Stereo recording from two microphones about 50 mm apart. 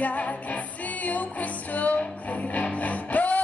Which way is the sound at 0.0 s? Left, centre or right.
Left.